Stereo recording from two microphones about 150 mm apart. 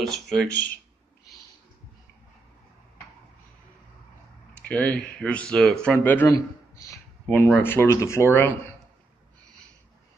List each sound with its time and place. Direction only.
0.0 s speech: 5° left (ahead or behind)
4.6 s speech: 10° left (ahead or behind)
6.3 s a sound: 25° left (ahead or behind)
7.2 s speech: 10° left (ahead or behind)